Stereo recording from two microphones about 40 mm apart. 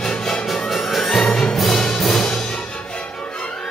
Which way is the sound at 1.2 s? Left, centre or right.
Left.